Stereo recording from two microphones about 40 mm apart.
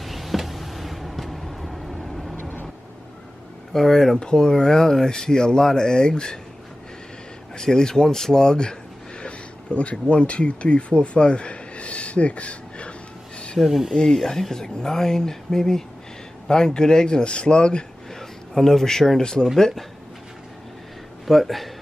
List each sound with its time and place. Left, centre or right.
0.0 s a sound: centre
2.0 s vehicle: centre
3.7 s speech: centre
7.5 s speech: centre
13.6 s speech: centre
13.9 s speech: centre
18.5 s speech: centre
21.3 s speech: centre